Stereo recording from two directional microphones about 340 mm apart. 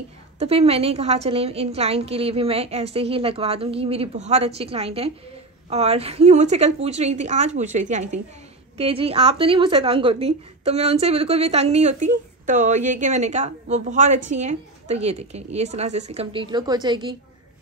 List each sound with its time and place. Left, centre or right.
0.4 s a woman's voice: centre